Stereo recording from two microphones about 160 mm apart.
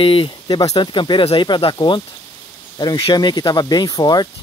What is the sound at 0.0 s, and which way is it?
Speech, 30° left (ahead or behind).